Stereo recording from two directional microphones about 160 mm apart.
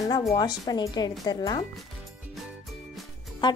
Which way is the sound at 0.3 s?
25° left (ahead or behind).